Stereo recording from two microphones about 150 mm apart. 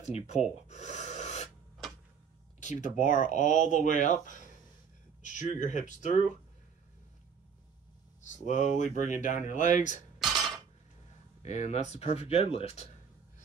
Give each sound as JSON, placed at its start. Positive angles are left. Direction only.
{"t": 0.0, "sound": "gasp", "side_deg": 45}
{"t": 2.6, "sound": "speech", "side_deg": 55}
{"t": 8.2, "sound": "speech", "side_deg": 55}
{"t": 10.1, "sound": "dishes", "side_deg": 0}
{"t": 11.4, "sound": "speech", "side_deg": 50}